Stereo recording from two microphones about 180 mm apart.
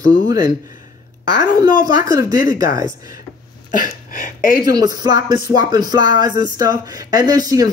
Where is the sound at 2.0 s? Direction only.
20° right (ahead or behind).